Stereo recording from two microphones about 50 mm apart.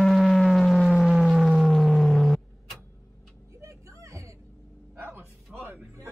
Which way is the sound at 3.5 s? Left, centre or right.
Right.